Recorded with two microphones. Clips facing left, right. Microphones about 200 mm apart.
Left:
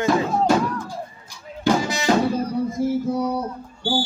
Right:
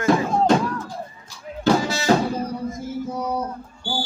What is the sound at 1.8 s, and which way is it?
Music, 15° left (ahead or behind).